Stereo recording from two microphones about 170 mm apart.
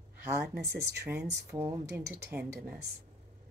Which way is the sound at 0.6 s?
75° right (ahead or behind).